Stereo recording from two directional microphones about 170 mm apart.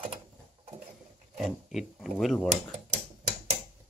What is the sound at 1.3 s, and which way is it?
Speech, centre (ahead or behind).